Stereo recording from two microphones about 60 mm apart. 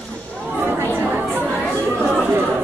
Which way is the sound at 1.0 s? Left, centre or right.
Centre.